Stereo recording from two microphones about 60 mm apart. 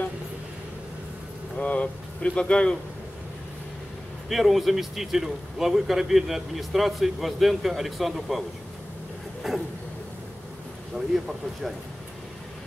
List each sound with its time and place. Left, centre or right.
1.6 s speech: left
4.3 s a man's voice: centre
10.9 s speech: centre